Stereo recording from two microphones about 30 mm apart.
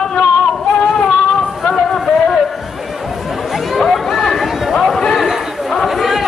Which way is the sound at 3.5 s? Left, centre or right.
Centre.